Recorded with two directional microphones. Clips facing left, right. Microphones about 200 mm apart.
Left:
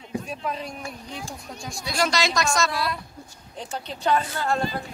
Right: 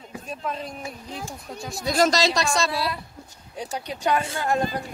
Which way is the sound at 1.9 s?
40° right (ahead or behind).